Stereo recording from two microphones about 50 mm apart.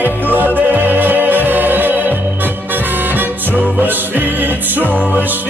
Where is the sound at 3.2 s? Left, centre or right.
Right.